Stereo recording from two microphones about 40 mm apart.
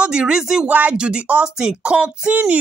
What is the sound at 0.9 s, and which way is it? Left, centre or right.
Speech, right.